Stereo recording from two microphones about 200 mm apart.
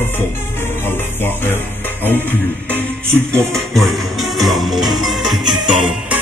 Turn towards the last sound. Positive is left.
turn(degrees=-5)  # may be behind; listen again after turning